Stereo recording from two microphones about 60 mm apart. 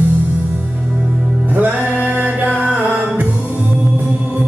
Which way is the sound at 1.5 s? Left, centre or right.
Right.